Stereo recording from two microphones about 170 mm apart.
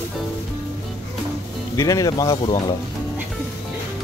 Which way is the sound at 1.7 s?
20° left (ahead or behind).